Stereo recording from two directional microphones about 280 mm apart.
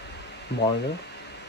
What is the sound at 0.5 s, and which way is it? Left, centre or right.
Speech, left.